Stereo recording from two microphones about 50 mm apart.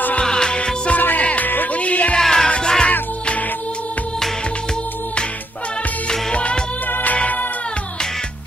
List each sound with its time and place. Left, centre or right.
0.2 s music: centre
2.1 s music: centre
6.0 s music: left
6.9 s music: left